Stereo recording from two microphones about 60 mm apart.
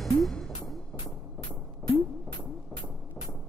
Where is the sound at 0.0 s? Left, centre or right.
Centre.